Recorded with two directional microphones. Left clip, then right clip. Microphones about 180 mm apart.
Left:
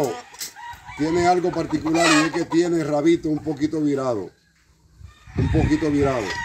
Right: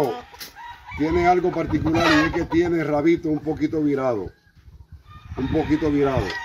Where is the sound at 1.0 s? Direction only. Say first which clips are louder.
Even; 5° left (ahead or behind).